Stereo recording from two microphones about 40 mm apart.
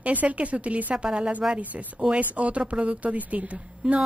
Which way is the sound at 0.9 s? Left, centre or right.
Right.